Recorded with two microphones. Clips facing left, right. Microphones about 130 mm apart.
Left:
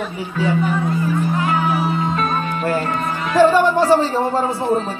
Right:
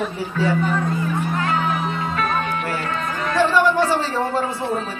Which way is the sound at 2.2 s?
35° left (ahead or behind).